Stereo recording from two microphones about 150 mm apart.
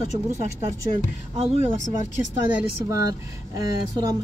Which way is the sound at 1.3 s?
45° right (ahead or behind).